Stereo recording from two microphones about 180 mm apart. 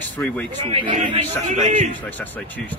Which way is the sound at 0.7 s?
35° right (ahead or behind).